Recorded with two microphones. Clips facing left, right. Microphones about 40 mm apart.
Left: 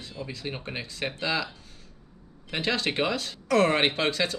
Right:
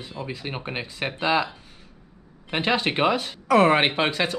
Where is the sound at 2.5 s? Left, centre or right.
Right.